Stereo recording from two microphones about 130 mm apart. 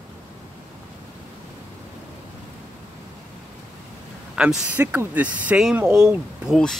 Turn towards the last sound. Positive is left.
turn(degrees=-5)  # may be behind; listen again after turning